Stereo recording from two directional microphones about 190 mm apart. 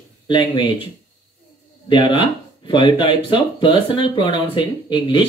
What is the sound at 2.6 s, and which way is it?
Speech, 25° left (ahead or behind).